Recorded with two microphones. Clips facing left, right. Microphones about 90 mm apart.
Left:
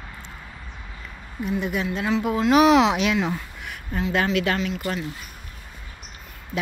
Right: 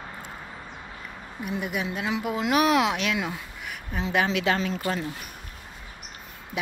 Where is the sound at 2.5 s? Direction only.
Centre (ahead or behind).